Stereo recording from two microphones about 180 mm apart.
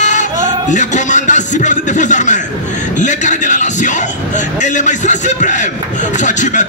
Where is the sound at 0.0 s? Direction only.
45° left (ahead or behind).